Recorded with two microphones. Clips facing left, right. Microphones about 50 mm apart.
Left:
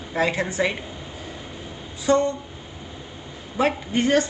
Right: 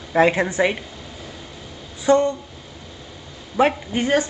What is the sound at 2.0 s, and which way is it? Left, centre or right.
Speech, right.